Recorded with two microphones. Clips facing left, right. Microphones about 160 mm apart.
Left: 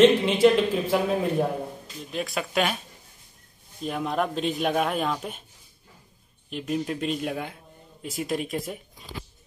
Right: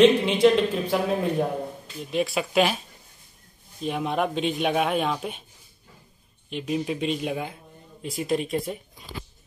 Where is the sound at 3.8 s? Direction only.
Centre (ahead or behind).